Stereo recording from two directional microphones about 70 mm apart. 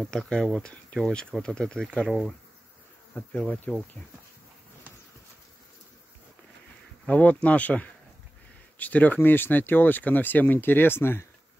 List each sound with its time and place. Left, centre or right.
0.0 s speech: centre
7.1 s speech: centre; by 11.2 s left